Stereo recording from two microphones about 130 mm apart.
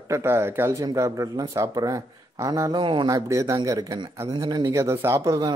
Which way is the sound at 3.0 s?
25° right (ahead or behind).